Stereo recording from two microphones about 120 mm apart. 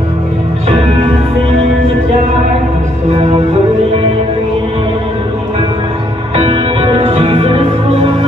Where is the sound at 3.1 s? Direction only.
60° right (ahead or behind).